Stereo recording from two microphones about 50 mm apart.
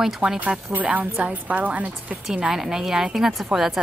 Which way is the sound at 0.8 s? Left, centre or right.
Right.